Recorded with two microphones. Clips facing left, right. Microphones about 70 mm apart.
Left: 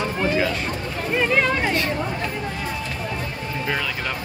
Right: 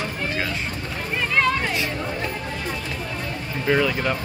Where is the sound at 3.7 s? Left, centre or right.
Centre.